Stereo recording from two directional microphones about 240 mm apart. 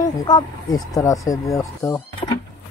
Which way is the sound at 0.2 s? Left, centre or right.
Centre.